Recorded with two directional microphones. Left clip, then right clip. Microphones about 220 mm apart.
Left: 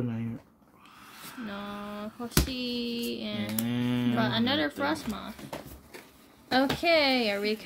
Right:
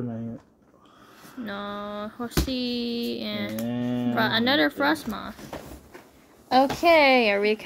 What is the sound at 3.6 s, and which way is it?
Mantra, 45° left (ahead or behind).